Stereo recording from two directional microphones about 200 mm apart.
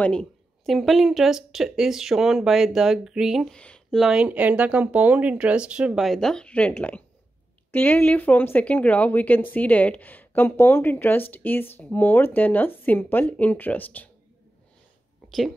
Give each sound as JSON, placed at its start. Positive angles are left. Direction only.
{"t": 0.0, "sound": "speech", "side_deg": 5}
{"t": 15.2, "sound": "speech", "side_deg": 0}